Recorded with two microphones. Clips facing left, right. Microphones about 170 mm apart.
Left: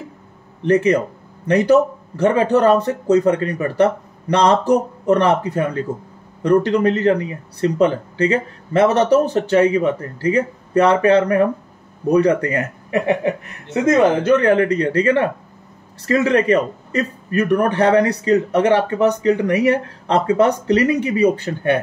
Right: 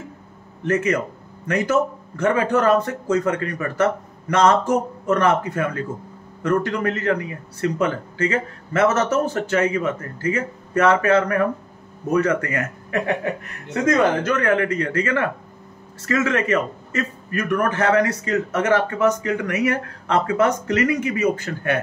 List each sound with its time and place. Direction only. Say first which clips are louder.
0.7 s a man's voice: left 6 dB; 30° left (ahead or behind)
12.9 s chuckle: left 5 dB; 20° left (ahead or behind)
13.8 s a man's voice: left 5 dB; 20° left (ahead or behind)